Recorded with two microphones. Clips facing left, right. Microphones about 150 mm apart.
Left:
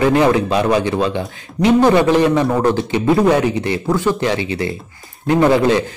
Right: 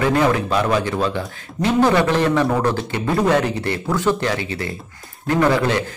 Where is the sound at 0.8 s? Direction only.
20° left (ahead or behind).